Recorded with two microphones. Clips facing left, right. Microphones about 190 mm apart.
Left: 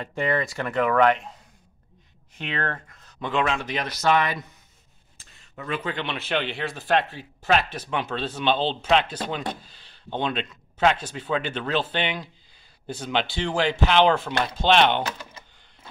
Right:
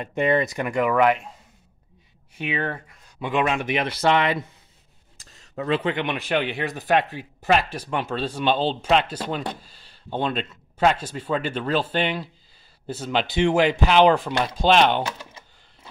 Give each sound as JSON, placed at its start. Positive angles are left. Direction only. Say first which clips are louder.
{"t": 0.0, "sound": "speech", "louder": "right 4 dB", "side_deg": -20}
{"t": 2.3, "sound": "speech", "louder": "right 3 dB", "side_deg": -10}
{"t": 5.2, "sound": "a sound", "louder": "right 8 dB", "side_deg": -40}
{"t": 5.9, "sound": "speech", "louder": "right 3 dB", "side_deg": -15}
{"t": 13.3, "sound": "speech", "louder": "right 6 dB", "side_deg": -20}
{"t": 13.8, "sound": "speech", "louder": "right 1 dB", "side_deg": -10}